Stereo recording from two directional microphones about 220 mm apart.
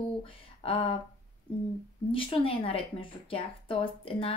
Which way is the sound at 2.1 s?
25° left (ahead or behind).